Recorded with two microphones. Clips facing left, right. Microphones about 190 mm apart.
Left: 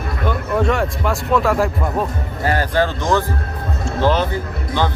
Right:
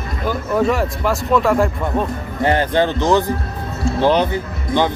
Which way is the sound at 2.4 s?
20° right (ahead or behind).